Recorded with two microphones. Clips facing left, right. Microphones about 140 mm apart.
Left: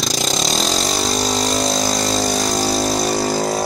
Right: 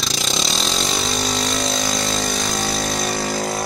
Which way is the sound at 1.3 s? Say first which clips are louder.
Left 4 dB; 40° left (ahead or behind).